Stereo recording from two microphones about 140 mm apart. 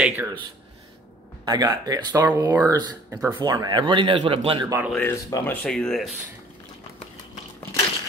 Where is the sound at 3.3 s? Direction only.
30° right (ahead or behind).